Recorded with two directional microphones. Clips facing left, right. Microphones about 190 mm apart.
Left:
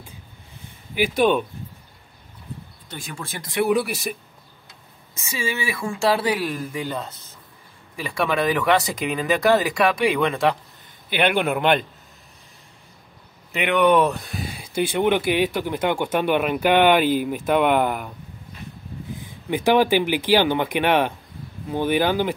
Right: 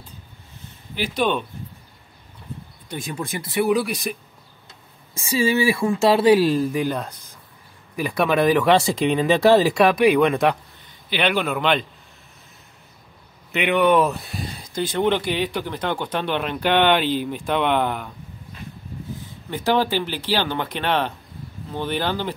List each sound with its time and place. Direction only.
0.9 s speech: 10° left (ahead or behind)
2.9 s speech: 20° right (ahead or behind)
3.5 s speech: centre (ahead or behind)
5.1 s speech: 35° right (ahead or behind)
8.2 s speech: 25° right (ahead or behind)
10.2 s speech: 15° right (ahead or behind)
11.1 s a man's voice: 50° left (ahead or behind)
13.7 s speech: centre (ahead or behind)
19.1 s speech: 15° left (ahead or behind)